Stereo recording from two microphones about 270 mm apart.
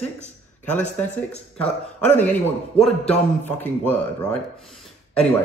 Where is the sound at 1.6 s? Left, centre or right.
Centre.